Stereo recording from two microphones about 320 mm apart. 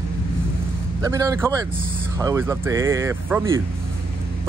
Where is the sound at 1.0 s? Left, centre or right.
Centre.